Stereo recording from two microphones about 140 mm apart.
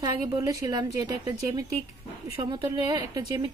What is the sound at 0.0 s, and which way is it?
A woman's voice, 30° right (ahead or behind).